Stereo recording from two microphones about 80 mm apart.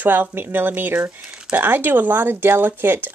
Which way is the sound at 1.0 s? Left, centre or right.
Centre.